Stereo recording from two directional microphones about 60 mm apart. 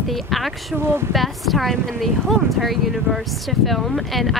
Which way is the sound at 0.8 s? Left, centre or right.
Right.